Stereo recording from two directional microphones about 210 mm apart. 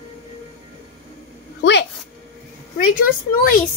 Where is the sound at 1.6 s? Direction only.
55° left (ahead or behind).